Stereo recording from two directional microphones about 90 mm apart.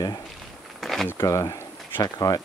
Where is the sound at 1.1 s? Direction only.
40° left (ahead or behind).